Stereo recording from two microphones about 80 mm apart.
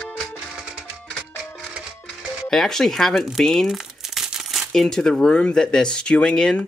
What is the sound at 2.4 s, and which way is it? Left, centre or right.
Crumpling, centre.